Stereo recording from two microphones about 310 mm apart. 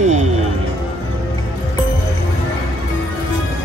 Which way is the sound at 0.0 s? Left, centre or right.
Right.